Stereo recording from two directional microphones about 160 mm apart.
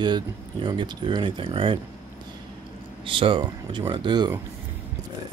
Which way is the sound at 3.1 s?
35° right (ahead or behind).